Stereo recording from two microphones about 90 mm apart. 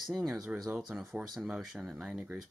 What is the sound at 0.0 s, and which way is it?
Speech, centre (ahead or behind).